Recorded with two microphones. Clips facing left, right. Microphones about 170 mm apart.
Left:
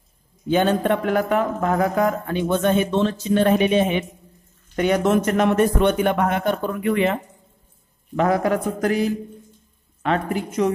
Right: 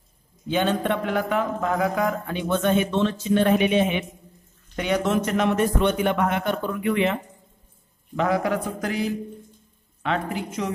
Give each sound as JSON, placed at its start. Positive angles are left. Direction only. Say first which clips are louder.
{"t": 0.5, "sound": "a man's voice", "louder": "left 4 dB", "side_deg": 45}
{"t": 8.2, "sound": "speech", "louder": "left 3 dB", "side_deg": 45}
{"t": 10.0, "sound": "speech", "louder": "left 4 dB", "side_deg": 45}